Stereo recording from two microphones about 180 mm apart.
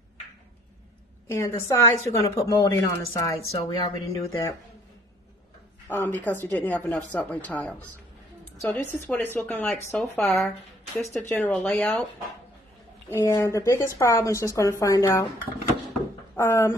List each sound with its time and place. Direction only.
1.2 s a woman's voice: 15° left (ahead or behind)
5.9 s a woman's voice: 10° left (ahead or behind)
13.1 s a woman's voice: 15° left (ahead or behind)
16.3 s speech: 15° left (ahead or behind)